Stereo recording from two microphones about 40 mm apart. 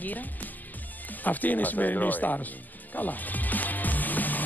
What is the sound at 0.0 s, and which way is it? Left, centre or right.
Speech, left.